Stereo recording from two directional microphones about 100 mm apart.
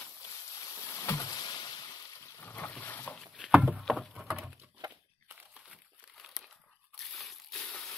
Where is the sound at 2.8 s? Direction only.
20° left (ahead or behind).